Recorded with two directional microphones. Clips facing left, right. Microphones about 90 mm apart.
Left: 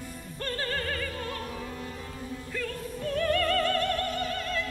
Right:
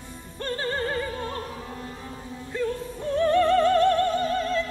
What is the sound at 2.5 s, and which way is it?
Music, 25° right (ahead or behind).